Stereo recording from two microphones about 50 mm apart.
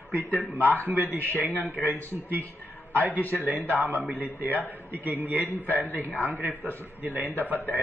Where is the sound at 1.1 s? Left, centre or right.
Right.